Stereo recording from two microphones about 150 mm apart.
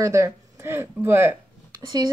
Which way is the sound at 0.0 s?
20° right (ahead or behind).